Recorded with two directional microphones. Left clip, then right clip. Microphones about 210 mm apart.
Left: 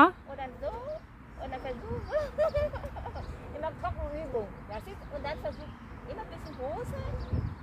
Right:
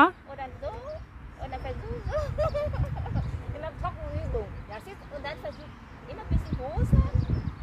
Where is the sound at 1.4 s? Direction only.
15° right (ahead or behind).